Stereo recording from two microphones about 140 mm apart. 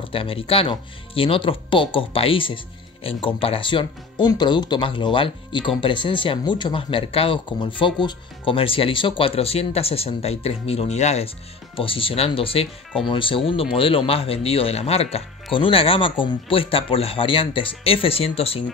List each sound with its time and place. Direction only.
0.0 s speech: 40° left (ahead or behind)